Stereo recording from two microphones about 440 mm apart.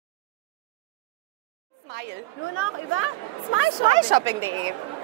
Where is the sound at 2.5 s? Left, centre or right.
Left.